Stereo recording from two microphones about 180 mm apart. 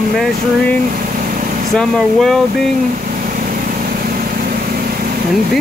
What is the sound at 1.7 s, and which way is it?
Speech, centre (ahead or behind).